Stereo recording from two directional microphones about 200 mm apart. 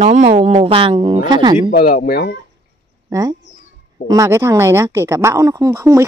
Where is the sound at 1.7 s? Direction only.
45° left (ahead or behind).